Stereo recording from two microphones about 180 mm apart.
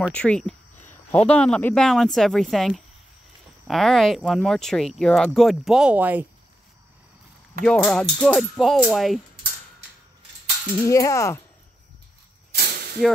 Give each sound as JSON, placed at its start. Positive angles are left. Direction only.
{"t": 0.1, "sound": "speech", "side_deg": 5}
{"t": 7.6, "sound": "speech", "side_deg": 5}
{"t": 10.9, "sound": "speech", "side_deg": 15}
{"t": 12.5, "sound": "a sound", "side_deg": -65}